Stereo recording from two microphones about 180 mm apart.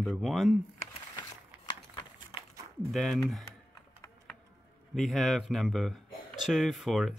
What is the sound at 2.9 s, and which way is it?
Speech, centre (ahead or behind).